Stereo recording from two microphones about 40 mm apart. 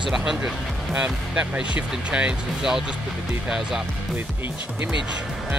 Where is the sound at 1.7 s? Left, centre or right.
Right.